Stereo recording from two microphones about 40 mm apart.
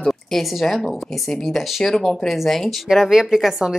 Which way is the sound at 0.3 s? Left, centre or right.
Centre.